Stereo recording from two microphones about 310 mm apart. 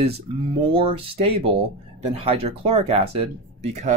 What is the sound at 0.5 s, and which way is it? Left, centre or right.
Speech, centre.